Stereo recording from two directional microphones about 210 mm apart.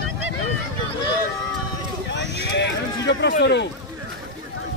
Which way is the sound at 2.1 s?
55° left (ahead or behind).